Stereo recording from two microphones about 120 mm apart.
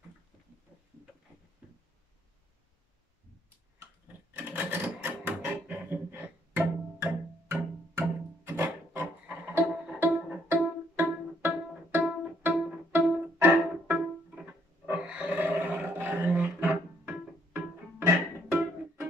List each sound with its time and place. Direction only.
4.3 s music: 15° right (ahead or behind)
18.5 s music: 15° right (ahead or behind)